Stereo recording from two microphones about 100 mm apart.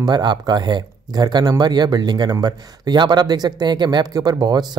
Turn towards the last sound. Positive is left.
turn(degrees=-45)  # may be behind; listen again after turning